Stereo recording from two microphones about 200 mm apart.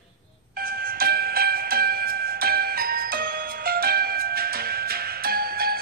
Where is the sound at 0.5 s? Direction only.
45° right (ahead or behind).